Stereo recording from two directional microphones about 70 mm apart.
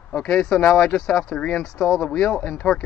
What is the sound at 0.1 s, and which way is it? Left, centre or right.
Speech, centre.